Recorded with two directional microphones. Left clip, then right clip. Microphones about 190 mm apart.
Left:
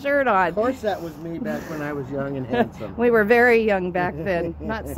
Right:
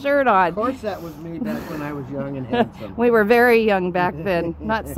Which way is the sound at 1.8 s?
5° left (ahead or behind).